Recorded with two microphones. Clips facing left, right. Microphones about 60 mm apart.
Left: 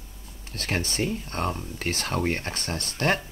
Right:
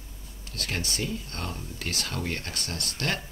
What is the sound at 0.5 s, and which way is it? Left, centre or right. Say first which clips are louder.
Speech: left 4 dB; left.